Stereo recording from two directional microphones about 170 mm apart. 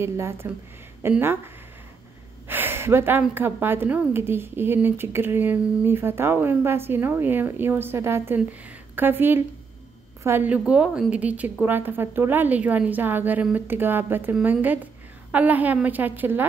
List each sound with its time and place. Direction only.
0.0 s speech: 15° right (ahead or behind)
2.4 s speech: 10° right (ahead or behind)